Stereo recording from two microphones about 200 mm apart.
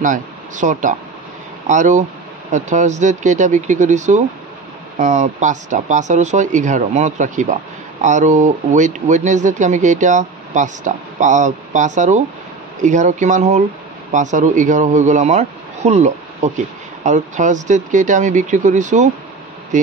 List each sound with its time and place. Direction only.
0.0 s speech: 40° right (ahead or behind)